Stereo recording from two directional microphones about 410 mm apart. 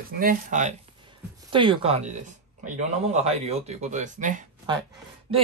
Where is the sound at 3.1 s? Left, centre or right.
Centre.